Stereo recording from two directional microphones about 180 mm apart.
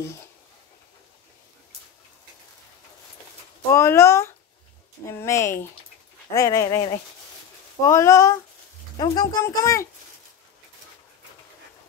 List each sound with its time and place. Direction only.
3.7 s speech: 15° left (ahead or behind)